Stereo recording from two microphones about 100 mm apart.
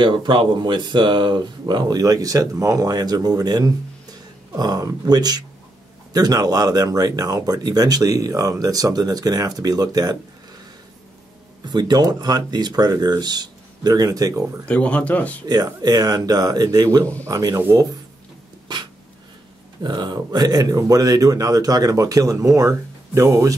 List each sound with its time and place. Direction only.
0.0 s speech: 50° right (ahead or behind)
11.6 s speech: 45° right (ahead or behind)
14.7 s speech: 15° left (ahead or behind)
15.4 s speech: 40° right (ahead or behind)
19.8 s speech: 45° right (ahead or behind); by 23.5 s 30° right (ahead or behind)